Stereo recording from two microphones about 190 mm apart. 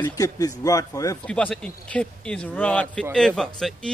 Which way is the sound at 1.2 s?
5° left (ahead or behind).